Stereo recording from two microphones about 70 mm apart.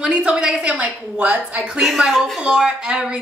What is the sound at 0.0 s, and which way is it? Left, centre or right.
A woman's voice, centre.